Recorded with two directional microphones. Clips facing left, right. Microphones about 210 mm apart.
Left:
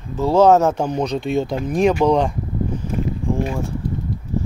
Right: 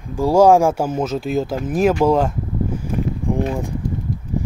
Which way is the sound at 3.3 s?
15° right (ahead or behind).